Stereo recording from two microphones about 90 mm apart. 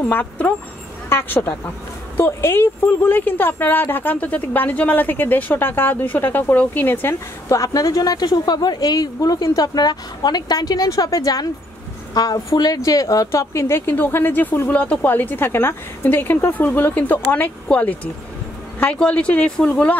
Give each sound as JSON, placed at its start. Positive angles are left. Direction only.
{"t": 0.0, "sound": "a woman's voice", "side_deg": 20}
{"t": 7.4, "sound": "a woman's voice", "side_deg": 35}